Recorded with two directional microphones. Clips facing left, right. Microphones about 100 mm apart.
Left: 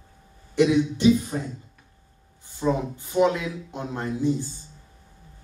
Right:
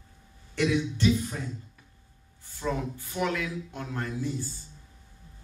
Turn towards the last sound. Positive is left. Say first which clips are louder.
# left 7 dB
turn(degrees=20)  # may be behind; listen again after turning